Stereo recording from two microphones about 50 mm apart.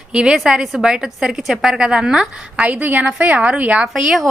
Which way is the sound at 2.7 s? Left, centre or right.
Right.